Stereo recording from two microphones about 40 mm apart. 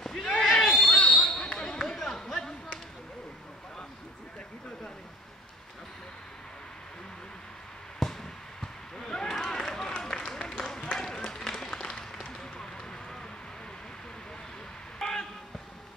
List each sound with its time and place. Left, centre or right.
0.0 s basketball bounce: centre
0.9 s basketball bounce: centre
8.0 s a sound: centre
10.8 s run: centre
11.7 s applause: centre
15.0 s a sound: centre